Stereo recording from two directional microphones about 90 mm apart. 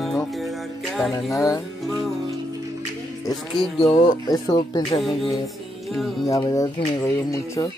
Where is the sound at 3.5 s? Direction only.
85° left.